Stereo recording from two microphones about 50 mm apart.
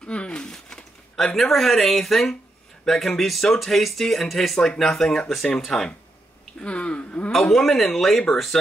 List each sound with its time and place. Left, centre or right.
0.0 s a sound: left
1.1 s speech: centre
6.6 s speech: left
7.2 s speech: centre